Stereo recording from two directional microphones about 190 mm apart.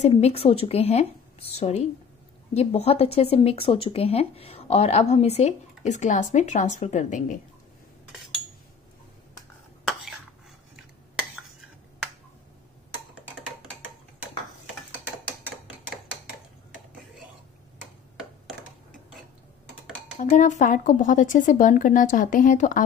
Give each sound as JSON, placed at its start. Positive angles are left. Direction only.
{"t": 0.0, "sound": "speech", "side_deg": 30}
{"t": 20.2, "sound": "speech", "side_deg": 40}